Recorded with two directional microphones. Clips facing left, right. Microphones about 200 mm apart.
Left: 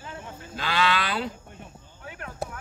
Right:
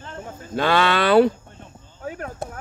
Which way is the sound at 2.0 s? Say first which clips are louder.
Right 9 dB; 40° right (ahead or behind).